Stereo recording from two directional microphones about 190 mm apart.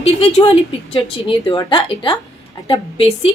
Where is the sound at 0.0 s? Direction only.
30° left (ahead or behind).